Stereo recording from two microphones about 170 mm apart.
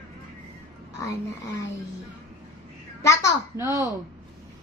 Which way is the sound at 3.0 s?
15° left (ahead or behind).